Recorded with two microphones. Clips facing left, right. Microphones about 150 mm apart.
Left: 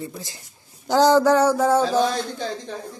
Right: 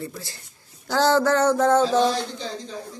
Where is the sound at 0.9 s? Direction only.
15° left (ahead or behind).